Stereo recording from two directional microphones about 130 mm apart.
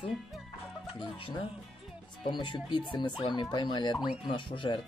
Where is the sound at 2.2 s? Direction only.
40° left (ahead or behind).